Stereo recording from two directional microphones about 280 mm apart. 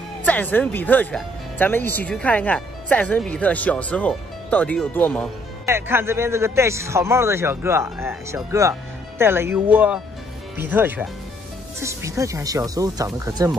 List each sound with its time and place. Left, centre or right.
0.2 s speech: centre
5.7 s a man's voice: centre